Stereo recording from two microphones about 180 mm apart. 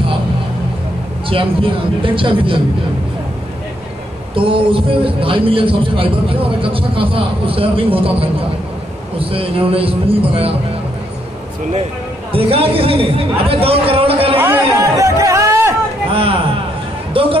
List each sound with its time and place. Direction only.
1.3 s a man's voice: 30° right (ahead or behind)
4.4 s a man's voice: 30° right (ahead or behind)
12.3 s a man's voice: 30° right (ahead or behind)
14.4 s chatter: 15° right (ahead or behind)
16.1 s a sound: 30° right (ahead or behind)
17.1 s speech: 30° right (ahead or behind)